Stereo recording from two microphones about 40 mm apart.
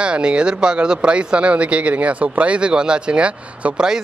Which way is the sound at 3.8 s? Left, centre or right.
Centre.